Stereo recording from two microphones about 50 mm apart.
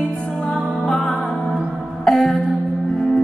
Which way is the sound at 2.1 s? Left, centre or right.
Centre.